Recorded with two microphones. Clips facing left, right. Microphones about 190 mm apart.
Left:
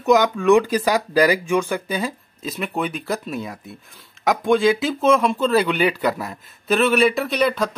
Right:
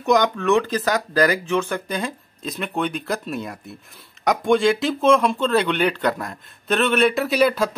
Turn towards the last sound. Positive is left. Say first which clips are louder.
# right 2 dB
turn(degrees=-5)  # may be behind; listen again after turning